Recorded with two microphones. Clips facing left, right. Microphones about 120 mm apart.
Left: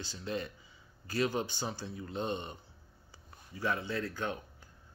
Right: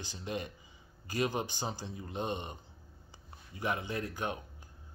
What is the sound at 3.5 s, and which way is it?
Speech, 20° right (ahead or behind).